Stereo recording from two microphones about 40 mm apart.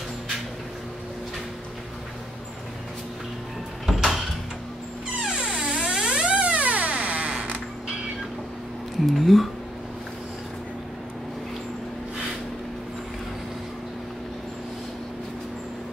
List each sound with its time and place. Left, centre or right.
3.8 s door: centre
5.2 s a sound: centre; by 7.3 s right
9.0 s speech: centre